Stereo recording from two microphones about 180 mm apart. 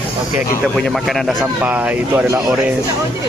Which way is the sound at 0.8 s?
Centre (ahead or behind).